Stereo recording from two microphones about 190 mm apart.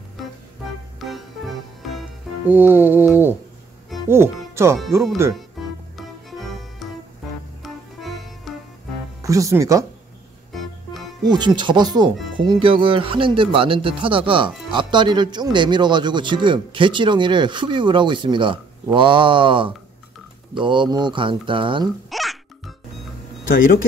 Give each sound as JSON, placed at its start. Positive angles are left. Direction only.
{"t": 0.9, "sound": "music", "side_deg": 0}
{"t": 4.1, "sound": "speech", "side_deg": -15}
{"t": 5.3, "sound": "music", "side_deg": 0}
{"t": 9.2, "sound": "music", "side_deg": -15}
{"t": 10.5, "sound": "music", "side_deg": 0}
{"t": 11.2, "sound": "speech", "side_deg": -25}
{"t": 22.1, "sound": "music", "side_deg": 0}